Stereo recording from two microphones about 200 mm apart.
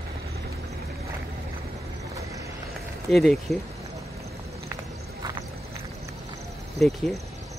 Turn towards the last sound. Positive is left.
turn(degrees=0)  # may be behind; listen again after turning